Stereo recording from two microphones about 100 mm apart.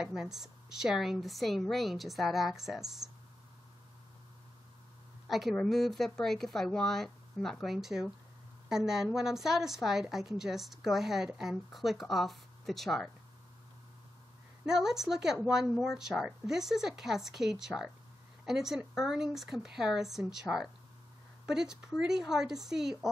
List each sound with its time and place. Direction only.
0.0 s a woman's voice: 5° right (ahead or behind)
5.3 s a woman's voice: centre (ahead or behind)
14.7 s a woman's voice: 5° right (ahead or behind)